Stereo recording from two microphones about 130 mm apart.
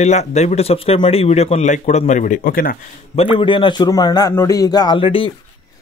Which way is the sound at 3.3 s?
40° left (ahead or behind).